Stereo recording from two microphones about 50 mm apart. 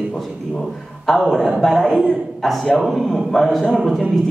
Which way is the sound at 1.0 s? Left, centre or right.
Centre.